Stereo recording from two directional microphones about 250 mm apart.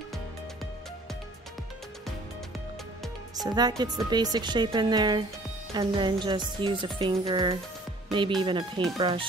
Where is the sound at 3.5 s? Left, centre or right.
Centre.